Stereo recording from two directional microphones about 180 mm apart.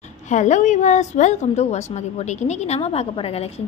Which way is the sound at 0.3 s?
40° left (ahead or behind).